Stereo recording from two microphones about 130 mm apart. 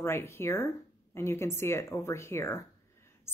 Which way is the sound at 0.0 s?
20° left (ahead or behind).